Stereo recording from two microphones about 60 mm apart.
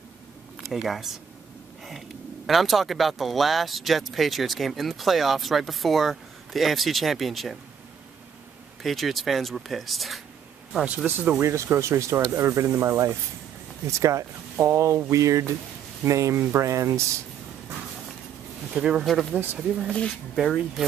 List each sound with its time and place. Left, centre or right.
0.7 s speech: centre
8.8 s speech: centre
11.1 s speech: right
11.4 s speech: right
18.7 s speech: centre
19.9 s speech: centre
20.3 s speech: centre